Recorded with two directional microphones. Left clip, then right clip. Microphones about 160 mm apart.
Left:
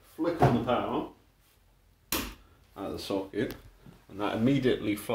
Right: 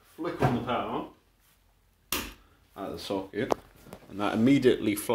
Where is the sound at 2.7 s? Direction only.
15° right (ahead or behind).